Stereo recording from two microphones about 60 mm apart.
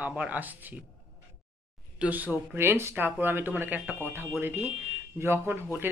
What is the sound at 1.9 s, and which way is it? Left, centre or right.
Speech, right.